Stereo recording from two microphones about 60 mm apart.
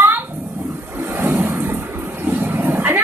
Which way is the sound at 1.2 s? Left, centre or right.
Right.